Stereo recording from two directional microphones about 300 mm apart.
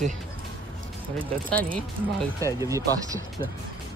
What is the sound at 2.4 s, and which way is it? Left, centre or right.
Speech, centre.